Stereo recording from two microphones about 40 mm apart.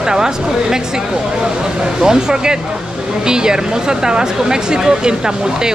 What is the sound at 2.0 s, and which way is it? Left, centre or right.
Speech, centre.